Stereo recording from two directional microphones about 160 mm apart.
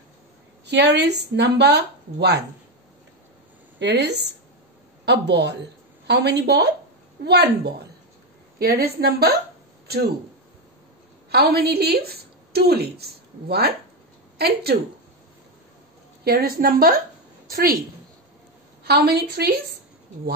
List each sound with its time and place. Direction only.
0.7 s speech: 90° right
3.8 s speech: 90° right
8.5 s a woman's voice: 75° right (ahead or behind)
11.2 s a woman's voice: 80° right
16.3 s a woman's voice: 70° right (ahead or behind)
18.9 s a woman's voice: 90° right